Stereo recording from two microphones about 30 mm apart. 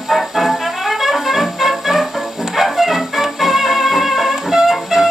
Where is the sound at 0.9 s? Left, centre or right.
Centre.